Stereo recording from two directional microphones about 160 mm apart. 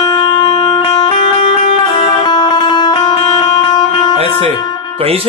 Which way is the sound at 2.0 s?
25° left (ahead or behind).